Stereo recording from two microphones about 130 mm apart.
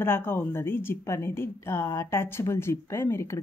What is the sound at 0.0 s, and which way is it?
A woman's voice, 15° left (ahead or behind).